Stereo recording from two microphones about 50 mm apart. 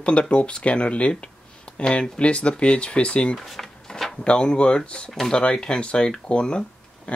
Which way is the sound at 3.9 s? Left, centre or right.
Centre.